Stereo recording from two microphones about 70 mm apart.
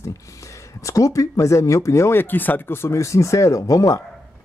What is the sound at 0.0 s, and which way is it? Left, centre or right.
Speech, left.